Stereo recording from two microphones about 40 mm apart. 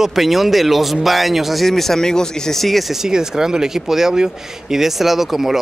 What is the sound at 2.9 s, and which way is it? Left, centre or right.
Speech, centre.